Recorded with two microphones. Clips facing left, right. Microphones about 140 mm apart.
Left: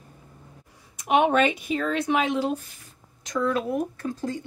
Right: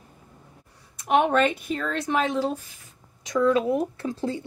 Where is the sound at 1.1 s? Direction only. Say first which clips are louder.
Even; 10° left (ahead or behind).